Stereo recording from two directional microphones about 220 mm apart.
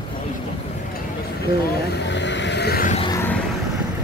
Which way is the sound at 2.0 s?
55° left (ahead or behind).